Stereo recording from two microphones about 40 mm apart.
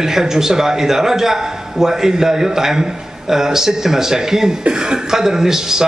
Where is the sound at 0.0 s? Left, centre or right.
Centre.